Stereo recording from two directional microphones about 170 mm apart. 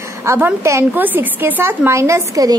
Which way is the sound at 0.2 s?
15° right (ahead or behind).